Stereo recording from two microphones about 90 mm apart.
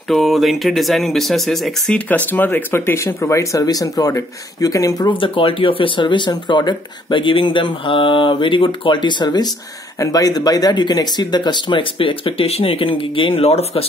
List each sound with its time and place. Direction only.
0.1 s speech: centre (ahead or behind)
2.0 s speech: 15° left (ahead or behind); by 5.1 s 40° left (ahead or behind)
5.1 s speech: 75° left (ahead or behind); by 9.5 s 55° left (ahead or behind)
9.9 s speech: 45° left (ahead or behind); by 13.8 s 85° left